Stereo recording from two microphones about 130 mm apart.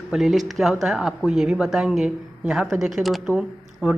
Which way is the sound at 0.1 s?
Centre (ahead or behind).